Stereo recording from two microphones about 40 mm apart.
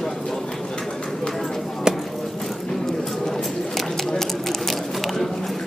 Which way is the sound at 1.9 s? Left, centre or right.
Centre.